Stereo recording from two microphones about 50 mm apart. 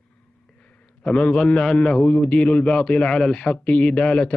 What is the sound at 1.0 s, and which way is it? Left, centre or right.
A man's voice, left.